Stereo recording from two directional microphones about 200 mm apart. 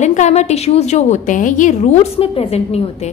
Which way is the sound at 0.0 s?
35° left (ahead or behind).